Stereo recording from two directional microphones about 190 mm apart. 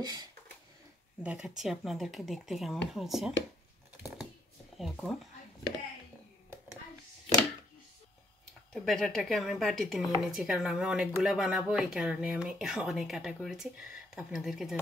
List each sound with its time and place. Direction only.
0.0 s a sound: 20° right (ahead or behind)
1.2 s speech: 5° right (ahead or behind)
4.7 s speech: centre (ahead or behind)
8.7 s speech: centre (ahead or behind)